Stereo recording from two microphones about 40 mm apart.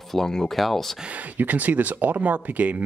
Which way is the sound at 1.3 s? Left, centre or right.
Right.